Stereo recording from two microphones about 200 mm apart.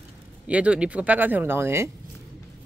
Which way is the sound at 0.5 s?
5° right (ahead or behind).